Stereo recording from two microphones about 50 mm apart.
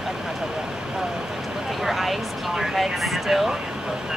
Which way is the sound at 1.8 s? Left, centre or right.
Centre.